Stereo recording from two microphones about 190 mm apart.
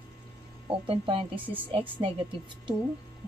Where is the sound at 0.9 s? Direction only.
30° right (ahead or behind).